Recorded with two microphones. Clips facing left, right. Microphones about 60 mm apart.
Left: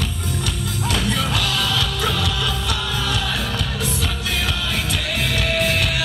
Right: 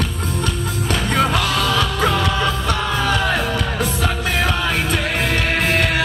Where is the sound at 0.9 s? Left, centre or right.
Right.